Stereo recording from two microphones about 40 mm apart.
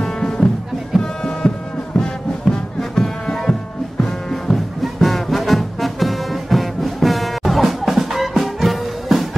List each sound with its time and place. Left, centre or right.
0.0 s music: centre